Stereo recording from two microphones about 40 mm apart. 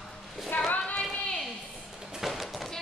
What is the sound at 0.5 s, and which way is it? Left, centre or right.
Child singing, left.